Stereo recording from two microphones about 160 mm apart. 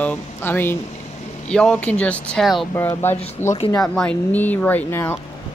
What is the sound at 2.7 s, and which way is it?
Speech, 15° left (ahead or behind).